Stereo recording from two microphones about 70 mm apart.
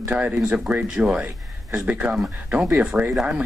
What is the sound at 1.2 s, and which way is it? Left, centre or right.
A man's voice, right.